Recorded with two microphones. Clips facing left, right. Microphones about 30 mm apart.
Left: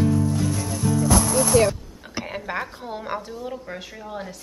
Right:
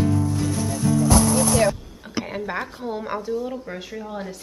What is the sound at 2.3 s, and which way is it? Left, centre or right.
A woman's voice, centre.